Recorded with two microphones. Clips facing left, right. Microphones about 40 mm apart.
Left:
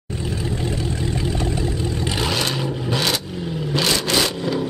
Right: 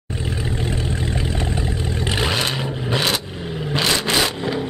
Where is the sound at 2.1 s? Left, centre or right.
Right.